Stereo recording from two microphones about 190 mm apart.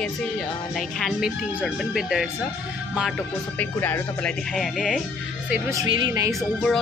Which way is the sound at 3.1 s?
10° left (ahead or behind).